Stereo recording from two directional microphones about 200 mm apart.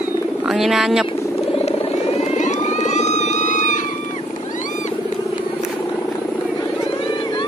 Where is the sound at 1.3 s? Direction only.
30° left (ahead or behind).